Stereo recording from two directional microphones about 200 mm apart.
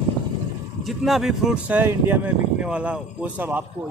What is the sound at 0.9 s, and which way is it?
Speech, centre (ahead or behind).